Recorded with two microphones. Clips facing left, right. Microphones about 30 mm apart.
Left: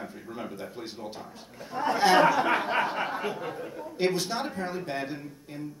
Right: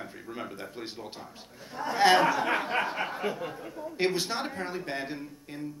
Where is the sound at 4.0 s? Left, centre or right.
Centre.